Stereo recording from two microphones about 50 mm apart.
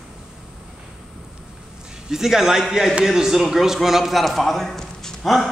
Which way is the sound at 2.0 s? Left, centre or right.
Centre.